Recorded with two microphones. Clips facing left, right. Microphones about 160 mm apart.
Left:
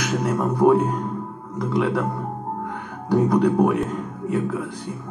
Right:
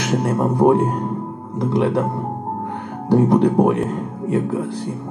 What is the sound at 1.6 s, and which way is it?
Speech, 25° right (ahead or behind).